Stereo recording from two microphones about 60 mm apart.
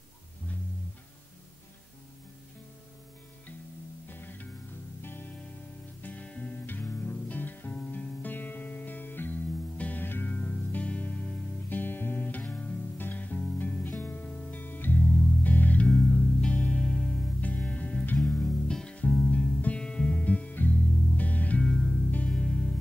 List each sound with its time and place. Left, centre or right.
4.1 s music: left
6.0 s music: left
10.3 s music: left
18.1 s music: centre
21.6 s music: centre
22.3 s music: left